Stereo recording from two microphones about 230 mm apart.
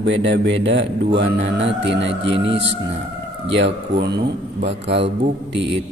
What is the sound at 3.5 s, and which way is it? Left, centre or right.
Mantra, right.